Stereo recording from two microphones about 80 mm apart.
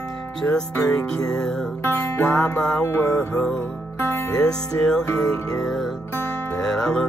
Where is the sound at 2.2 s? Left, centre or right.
Left.